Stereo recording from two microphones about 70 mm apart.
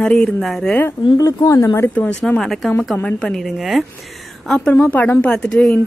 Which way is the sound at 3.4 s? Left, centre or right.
Centre.